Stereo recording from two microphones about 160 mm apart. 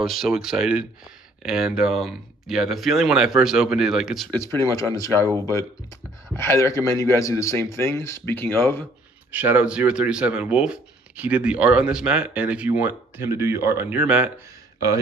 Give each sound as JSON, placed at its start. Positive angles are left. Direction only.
{"t": 0.0, "sound": "speech", "side_deg": 0}
{"t": 4.3, "sound": "a man's voice", "side_deg": 15}
{"t": 9.3, "sound": "speech", "side_deg": -10}